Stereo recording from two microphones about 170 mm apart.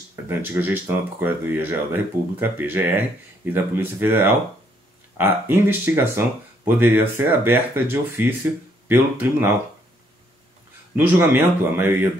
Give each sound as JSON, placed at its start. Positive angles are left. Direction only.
{"t": 0.1, "sound": "speech", "side_deg": -10}
{"t": 11.0, "sound": "speech", "side_deg": -10}